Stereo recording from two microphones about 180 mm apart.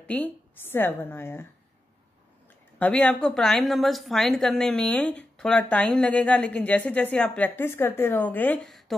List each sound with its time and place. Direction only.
0.0 s a woman's voice: 10° left (ahead or behind)
2.8 s a woman's voice: 5° left (ahead or behind)